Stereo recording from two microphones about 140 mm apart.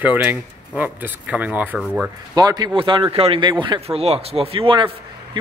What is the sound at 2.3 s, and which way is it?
A man's voice, 30° right (ahead or behind).